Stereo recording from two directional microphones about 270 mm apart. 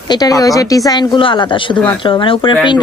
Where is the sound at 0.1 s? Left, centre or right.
Centre.